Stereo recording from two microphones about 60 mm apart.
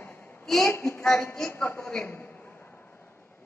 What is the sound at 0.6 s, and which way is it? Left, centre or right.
Speech, left.